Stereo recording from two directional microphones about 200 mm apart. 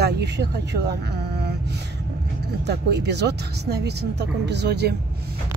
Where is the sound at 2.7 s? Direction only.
55° right (ahead or behind).